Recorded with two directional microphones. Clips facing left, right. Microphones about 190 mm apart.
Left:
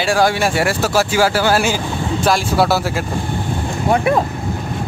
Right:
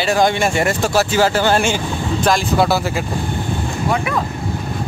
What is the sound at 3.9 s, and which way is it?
Speech, 35° left (ahead or behind).